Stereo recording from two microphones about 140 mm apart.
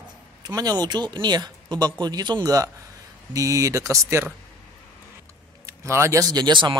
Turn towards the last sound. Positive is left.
turn(degrees=-30)  # may be behind; listen again after turning